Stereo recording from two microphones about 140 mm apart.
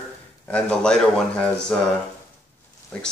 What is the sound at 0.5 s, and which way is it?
Speech, 5° left (ahead or behind).